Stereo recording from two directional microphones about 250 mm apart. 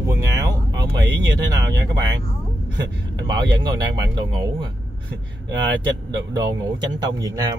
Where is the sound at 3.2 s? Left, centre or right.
Centre.